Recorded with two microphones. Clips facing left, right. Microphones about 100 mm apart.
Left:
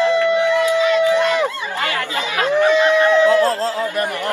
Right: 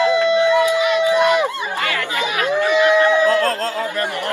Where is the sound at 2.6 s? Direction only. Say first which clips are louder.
Left 1 dB; 25° left (ahead or behind).